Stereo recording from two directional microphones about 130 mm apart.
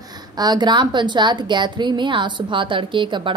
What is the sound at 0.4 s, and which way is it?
A woman's voice, 35° right (ahead or behind).